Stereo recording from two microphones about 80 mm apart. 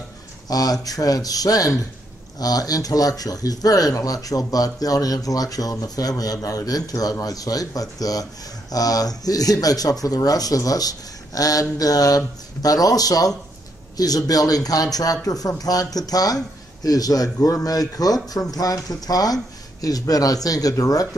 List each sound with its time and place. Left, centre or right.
0.5 s speech: left